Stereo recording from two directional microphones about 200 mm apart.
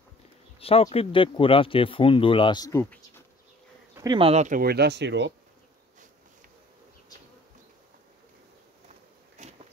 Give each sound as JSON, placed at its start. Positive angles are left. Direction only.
{"t": 0.6, "sound": "a sound", "side_deg": 30}
{"t": 0.9, "sound": "speech", "side_deg": 25}
{"t": 3.9, "sound": "insect", "side_deg": -15}
{"t": 4.2, "sound": "speech", "side_deg": -35}